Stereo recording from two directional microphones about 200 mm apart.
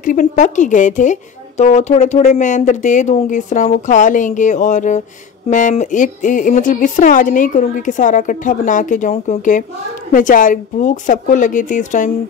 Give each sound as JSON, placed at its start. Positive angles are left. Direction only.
{"t": 0.0, "sound": "a woman's voice", "side_deg": 40}